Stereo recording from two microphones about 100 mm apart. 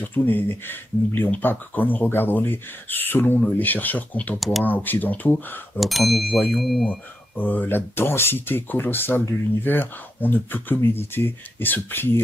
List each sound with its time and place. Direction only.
0.0 s speech: 20° left (ahead or behind)
4.4 s speech: centre (ahead or behind)
4.6 s speech: 20° left (ahead or behind)
5.8 s speech: centre (ahead or behind)
7.3 s speech: 20° left (ahead or behind)